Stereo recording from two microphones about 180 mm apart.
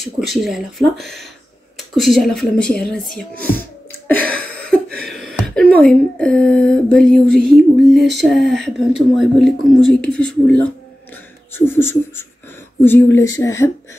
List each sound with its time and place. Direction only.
0.0 s speech: centre (ahead or behind)
4.1 s a sound: 10° left (ahead or behind)
5.4 s speech: 5° left (ahead or behind)